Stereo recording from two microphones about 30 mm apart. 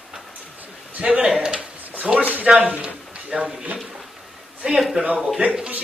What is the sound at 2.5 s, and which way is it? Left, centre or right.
A man's voice, right.